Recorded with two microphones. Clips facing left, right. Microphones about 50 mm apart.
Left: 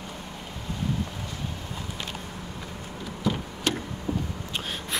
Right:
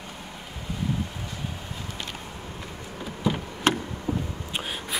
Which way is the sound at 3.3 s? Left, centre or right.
Right.